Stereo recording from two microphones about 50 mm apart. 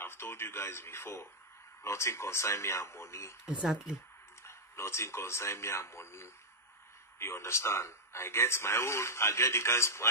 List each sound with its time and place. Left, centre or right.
0.0 s a man's voice: left
3.4 s speech: centre
4.5 s a man's voice: left